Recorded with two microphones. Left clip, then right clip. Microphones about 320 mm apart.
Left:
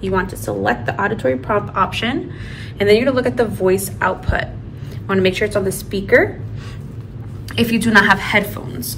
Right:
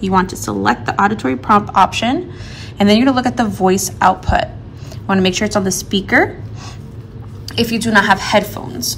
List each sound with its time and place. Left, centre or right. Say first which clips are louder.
0.0 s a woman's voice: right 4 dB; centre
7.5 s a woman's voice: even; centre